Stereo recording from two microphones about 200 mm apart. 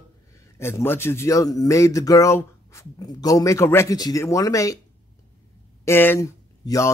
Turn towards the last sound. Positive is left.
turn(degrees=15)  # may be behind; listen again after turning